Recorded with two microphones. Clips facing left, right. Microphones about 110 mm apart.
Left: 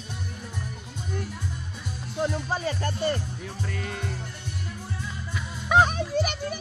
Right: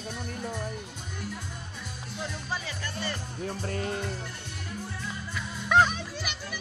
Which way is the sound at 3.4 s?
35° right (ahead or behind).